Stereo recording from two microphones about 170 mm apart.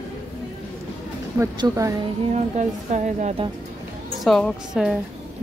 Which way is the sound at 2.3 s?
40° right (ahead or behind).